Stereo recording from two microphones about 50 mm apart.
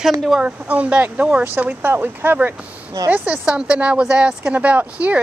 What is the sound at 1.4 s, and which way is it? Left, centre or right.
Speech, right.